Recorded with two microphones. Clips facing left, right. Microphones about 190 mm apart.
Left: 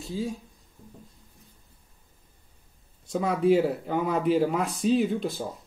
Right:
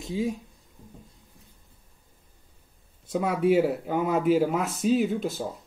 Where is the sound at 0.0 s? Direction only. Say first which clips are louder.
Right 3 dB; 20° right (ahead or behind).